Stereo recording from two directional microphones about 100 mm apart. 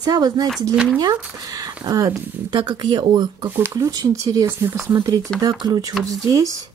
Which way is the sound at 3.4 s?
25° right (ahead or behind).